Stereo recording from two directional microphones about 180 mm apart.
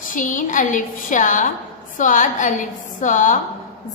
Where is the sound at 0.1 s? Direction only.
45° left (ahead or behind).